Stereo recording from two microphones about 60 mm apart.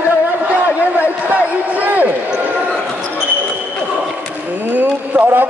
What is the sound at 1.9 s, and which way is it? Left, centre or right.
Speech, right.